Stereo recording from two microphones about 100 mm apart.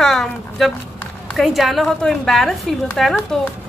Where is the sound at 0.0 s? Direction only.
5° left (ahead or behind).